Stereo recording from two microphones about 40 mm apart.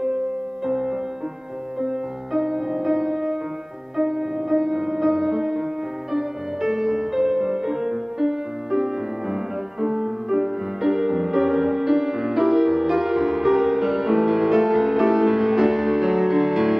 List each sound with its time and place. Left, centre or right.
0.7 s music: centre